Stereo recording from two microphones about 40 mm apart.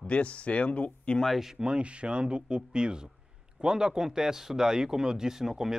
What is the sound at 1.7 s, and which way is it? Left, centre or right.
Speech, right.